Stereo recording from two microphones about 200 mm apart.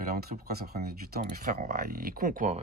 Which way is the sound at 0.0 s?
50° right (ahead or behind).